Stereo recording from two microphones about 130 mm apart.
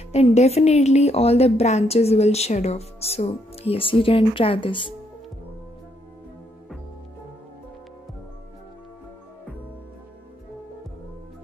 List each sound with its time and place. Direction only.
0.1 s speech: 55° left (ahead or behind); by 4.9 s 40° left (ahead or behind)